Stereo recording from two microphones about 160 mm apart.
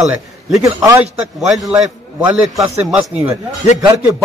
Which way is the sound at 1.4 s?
5° right (ahead or behind).